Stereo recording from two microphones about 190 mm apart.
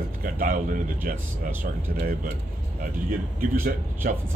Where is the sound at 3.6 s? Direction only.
45° right (ahead or behind).